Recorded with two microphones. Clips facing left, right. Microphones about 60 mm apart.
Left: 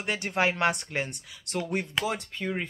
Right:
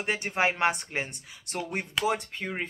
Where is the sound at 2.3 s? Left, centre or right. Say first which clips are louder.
Left 2 dB; centre.